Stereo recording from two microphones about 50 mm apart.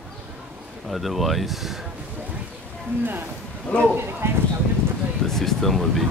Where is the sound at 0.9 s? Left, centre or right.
Centre.